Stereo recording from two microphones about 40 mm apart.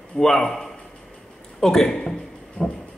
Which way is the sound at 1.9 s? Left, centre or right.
Centre.